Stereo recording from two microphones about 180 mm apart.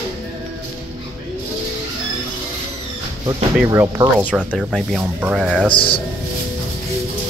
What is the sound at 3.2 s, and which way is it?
Speech, 20° right (ahead or behind).